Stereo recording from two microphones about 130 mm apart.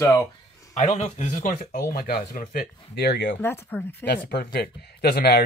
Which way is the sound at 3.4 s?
15° left (ahead or behind).